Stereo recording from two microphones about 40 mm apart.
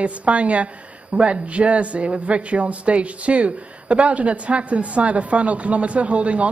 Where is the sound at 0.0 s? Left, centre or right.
Right.